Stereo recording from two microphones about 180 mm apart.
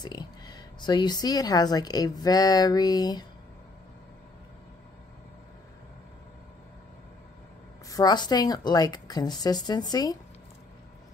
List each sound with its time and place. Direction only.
0.0 s a woman's voice: 25° left (ahead or behind)
7.9 s a woman's voice: 25° left (ahead or behind)